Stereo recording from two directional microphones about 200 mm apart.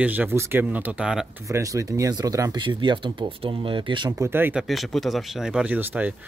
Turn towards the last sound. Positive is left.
turn(degrees=-10)  # may be behind; listen again after turning